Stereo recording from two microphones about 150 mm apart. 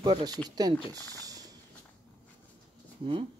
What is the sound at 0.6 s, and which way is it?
Speech, 25° right (ahead or behind).